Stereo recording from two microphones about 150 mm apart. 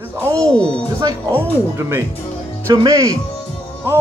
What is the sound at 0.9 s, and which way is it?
Speech, 20° right (ahead or behind).